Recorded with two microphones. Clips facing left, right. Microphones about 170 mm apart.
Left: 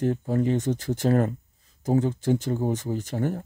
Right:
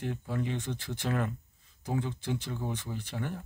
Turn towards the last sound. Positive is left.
turn(degrees=40)  # may be behind; listen again after turning